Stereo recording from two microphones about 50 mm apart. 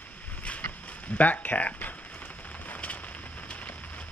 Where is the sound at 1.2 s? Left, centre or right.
Left.